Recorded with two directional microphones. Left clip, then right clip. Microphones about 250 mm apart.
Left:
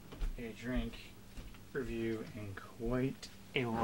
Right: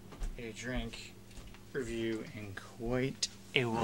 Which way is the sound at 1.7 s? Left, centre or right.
Centre.